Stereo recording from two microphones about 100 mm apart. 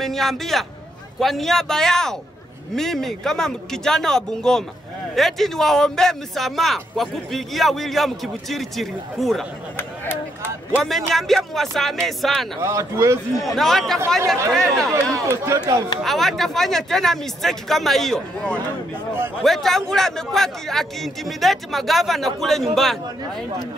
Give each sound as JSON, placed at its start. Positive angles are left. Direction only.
{"t": 0.0, "sound": "a man's voice", "side_deg": 5}
{"t": 10.8, "sound": "a man's voice", "side_deg": 0}
{"t": 12.6, "sound": "speech", "side_deg": -30}
{"t": 13.4, "sound": "a man's voice", "side_deg": 0}
{"t": 15.1, "sound": "speech", "side_deg": -30}
{"t": 16.0, "sound": "a man's voice", "side_deg": 0}